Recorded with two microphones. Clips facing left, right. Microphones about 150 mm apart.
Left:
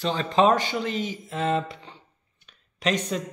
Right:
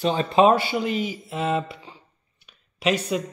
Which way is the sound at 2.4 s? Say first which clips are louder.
Right 3 dB; 10° right (ahead or behind).